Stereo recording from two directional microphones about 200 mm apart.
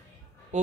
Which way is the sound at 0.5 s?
35° right (ahead or behind).